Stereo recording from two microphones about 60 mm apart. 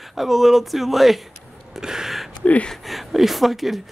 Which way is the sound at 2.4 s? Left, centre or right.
Left.